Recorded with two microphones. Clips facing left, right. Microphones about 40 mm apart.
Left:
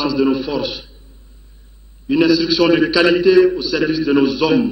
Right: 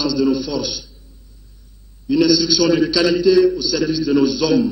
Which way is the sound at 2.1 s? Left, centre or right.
Left.